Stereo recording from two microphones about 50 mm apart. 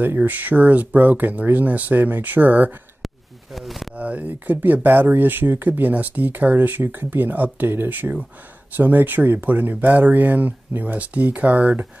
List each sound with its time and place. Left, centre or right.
0.0 s speech: right
3.5 s a sound: centre
3.9 s speech: right